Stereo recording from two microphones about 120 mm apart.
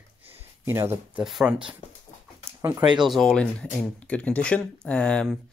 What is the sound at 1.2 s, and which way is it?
Speech, 5° right (ahead or behind).